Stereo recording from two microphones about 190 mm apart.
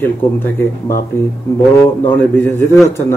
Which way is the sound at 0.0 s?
10° left (ahead or behind).